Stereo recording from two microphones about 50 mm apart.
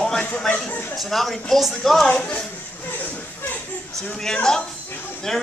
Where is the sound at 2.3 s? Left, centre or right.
Left.